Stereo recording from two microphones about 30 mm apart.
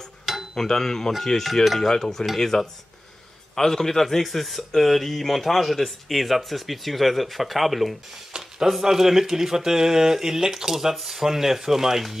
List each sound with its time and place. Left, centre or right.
0.2 s cutlery: centre
0.6 s cutlery: centre
1.2 s a man's voice: centre
1.8 s cutlery: centre
3.5 s a man's voice: centre
8.3 s a sound: centre
8.8 s speech: centre